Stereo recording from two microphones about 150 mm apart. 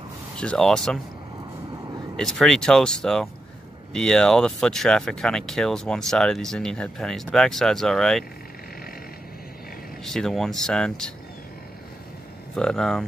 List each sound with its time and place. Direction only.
0.4 s speech: 5° left (ahead or behind)
2.1 s speech: centre (ahead or behind)
10.0 s speech: 5° left (ahead or behind)
12.5 s speech: 5° left (ahead or behind)